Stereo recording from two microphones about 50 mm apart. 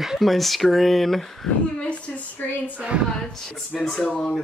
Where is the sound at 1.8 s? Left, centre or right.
Left.